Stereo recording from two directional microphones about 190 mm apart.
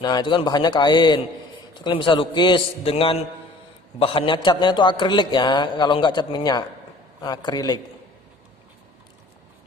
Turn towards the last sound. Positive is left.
turn(degrees=20)  # may be behind; listen again after turning